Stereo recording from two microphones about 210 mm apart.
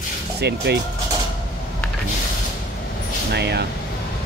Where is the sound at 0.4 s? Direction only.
50° right (ahead or behind).